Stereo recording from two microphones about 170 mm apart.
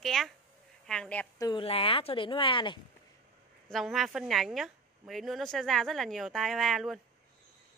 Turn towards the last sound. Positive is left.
turn(degrees=0)  # may be behind; listen again after turning